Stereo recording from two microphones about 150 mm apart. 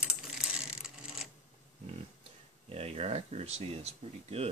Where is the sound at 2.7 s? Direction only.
45° right (ahead or behind).